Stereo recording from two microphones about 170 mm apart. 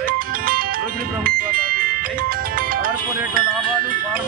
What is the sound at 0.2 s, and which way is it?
Music, 60° right (ahead or behind).